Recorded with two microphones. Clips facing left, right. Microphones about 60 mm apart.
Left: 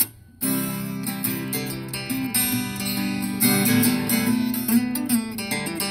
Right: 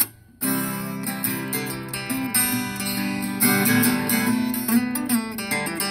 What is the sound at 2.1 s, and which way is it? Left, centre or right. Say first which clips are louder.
Music: even; right.